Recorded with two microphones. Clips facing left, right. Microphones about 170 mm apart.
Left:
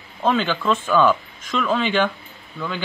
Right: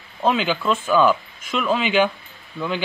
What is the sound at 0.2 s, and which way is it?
A man's voice, 10° right (ahead or behind).